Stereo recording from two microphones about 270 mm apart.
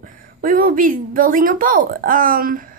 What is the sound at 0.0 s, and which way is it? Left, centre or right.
A woman's voice, right.